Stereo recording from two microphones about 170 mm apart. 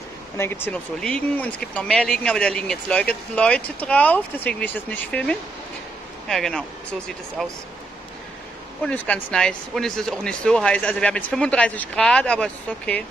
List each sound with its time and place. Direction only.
0.4 s speech: 15° left (ahead or behind)
8.8 s speech: 10° left (ahead or behind)